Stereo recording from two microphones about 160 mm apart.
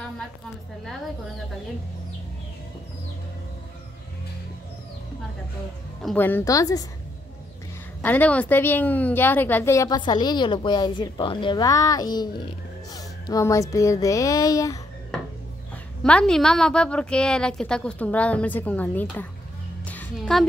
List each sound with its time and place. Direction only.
6.1 s a woman's voice: 10° left (ahead or behind)
8.0 s a woman's voice: 10° left (ahead or behind)
16.0 s a woman's voice: 5° left (ahead or behind)
19.8 s music: 10° left (ahead or behind)
20.2 s a woman's voice: centre (ahead or behind)